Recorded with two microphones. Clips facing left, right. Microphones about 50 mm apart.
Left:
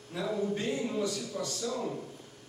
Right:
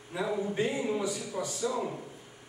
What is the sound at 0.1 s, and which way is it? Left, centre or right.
A man's voice, centre.